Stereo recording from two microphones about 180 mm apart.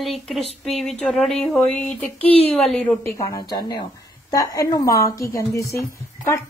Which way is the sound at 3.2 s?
20° left (ahead or behind).